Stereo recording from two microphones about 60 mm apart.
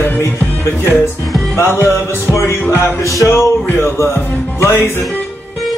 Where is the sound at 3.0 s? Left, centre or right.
Left.